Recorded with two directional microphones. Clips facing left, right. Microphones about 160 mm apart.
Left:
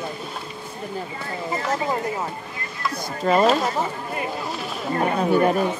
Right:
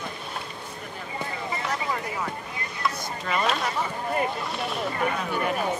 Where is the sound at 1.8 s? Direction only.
25° left (ahead or behind).